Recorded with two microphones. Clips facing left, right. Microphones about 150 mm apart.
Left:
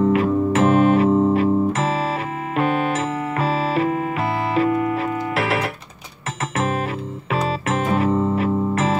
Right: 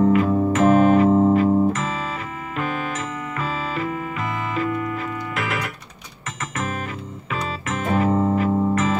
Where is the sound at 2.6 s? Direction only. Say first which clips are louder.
Left 7 dB; 30° left (ahead or behind).